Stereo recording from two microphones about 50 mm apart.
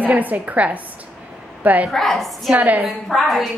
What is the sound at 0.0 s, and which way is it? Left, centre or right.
A woman's voice, right.